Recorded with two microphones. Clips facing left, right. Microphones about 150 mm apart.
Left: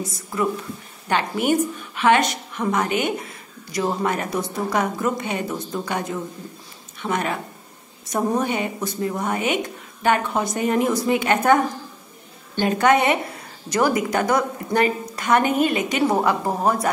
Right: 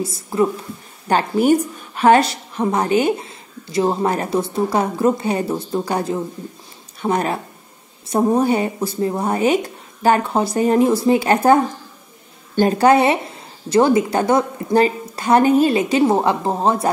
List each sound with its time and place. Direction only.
0.0 s a woman's voice: 30° right (ahead or behind)